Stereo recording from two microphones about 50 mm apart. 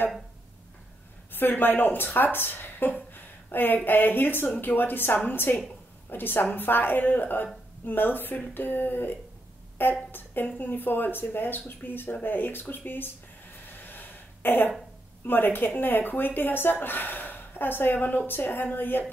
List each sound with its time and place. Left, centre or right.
1.3 s speech: left
13.7 s a sound: left
15.2 s speech: left